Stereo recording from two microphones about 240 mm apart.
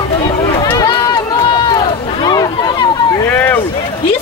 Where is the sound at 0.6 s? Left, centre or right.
Centre.